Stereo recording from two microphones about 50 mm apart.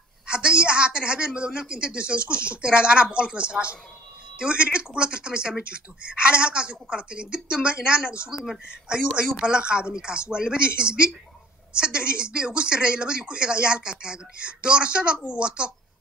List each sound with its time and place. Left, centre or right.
0.3 s speech: right